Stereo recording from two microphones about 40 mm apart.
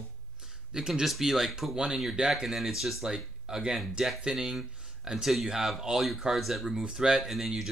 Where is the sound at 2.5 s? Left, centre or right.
Centre.